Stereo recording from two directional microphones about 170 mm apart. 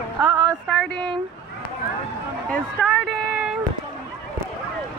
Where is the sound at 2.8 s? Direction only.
Centre (ahead or behind).